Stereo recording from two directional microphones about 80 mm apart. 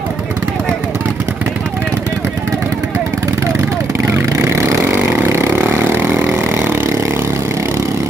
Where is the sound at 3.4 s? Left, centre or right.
Right.